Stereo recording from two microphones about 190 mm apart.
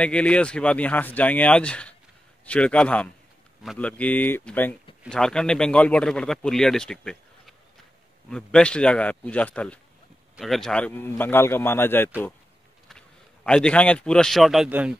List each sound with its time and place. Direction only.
0.0 s a man's voice: 5° left (ahead or behind)